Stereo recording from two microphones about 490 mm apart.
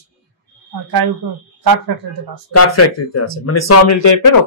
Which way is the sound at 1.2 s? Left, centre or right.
Right.